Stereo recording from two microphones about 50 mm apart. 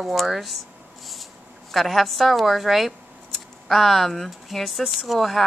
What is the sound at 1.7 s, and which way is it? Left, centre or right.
A woman's voice, centre.